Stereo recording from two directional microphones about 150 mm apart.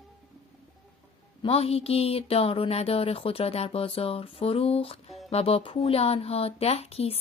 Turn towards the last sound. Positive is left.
turn(degrees=40)  # may be behind; listen again after turning